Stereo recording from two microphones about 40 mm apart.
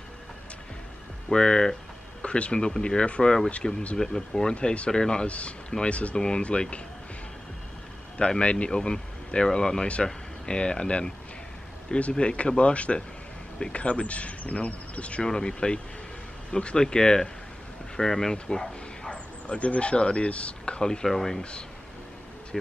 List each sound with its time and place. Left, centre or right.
1.3 s speech: centre
2.2 s speech: left
5.2 s speech: left
8.4 s speech: left
15.2 s speech: centre
19.0 s speech: left
20.8 s speech: centre
21.1 s speech: centre
21.4 s speech: left